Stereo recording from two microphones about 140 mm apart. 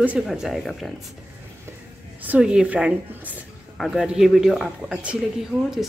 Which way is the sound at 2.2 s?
10° right (ahead or behind).